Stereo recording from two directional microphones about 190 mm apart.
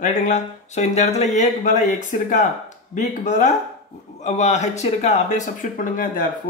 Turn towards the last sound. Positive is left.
turn(degrees=45)  # may be behind; listen again after turning